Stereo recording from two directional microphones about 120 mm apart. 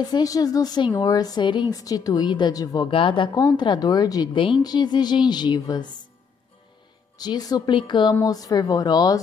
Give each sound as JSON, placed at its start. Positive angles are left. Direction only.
{"t": 0.0, "sound": "a woman's voice", "side_deg": 30}
{"t": 2.9, "sound": "a woman's voice", "side_deg": 45}
{"t": 3.3, "sound": "a woman's voice", "side_deg": 35}
{"t": 7.2, "sound": "a woman's voice", "side_deg": 35}